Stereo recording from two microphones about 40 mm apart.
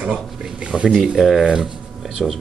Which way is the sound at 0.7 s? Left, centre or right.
Centre.